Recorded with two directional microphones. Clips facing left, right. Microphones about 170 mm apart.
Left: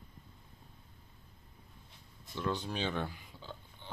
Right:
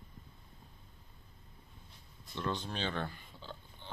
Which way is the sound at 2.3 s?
5° left (ahead or behind).